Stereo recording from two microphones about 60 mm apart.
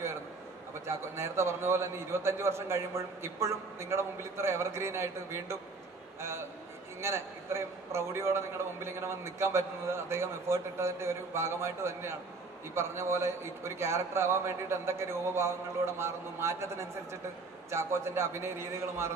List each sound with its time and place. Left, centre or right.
0.8 s a man's voice: right
7.0 s a man's voice: right